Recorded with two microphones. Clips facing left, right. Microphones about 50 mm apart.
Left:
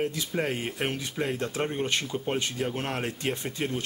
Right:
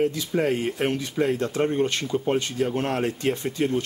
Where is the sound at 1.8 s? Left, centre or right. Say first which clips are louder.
Right 5 dB; centre.